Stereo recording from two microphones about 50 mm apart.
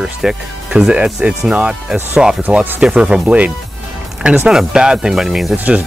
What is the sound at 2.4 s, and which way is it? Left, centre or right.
Speech, right.